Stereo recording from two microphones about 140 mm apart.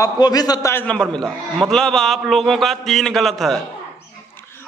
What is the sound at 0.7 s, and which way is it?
A man's voice, 5° left (ahead or behind).